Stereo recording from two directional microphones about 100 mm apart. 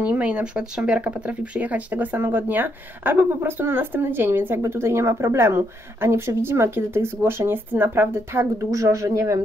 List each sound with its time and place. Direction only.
0.0 s speech: 10° right (ahead or behind); by 9.4 s 30° right (ahead or behind)